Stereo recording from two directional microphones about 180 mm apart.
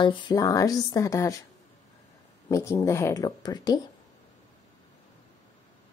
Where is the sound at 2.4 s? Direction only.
15° left (ahead or behind).